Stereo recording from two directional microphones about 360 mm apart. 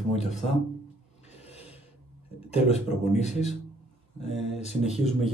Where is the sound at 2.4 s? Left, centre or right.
Centre.